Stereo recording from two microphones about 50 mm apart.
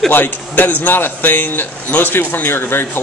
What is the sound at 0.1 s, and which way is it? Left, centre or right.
A man's voice, left.